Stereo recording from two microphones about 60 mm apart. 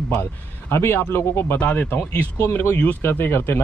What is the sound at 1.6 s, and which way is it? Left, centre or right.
Speech, left.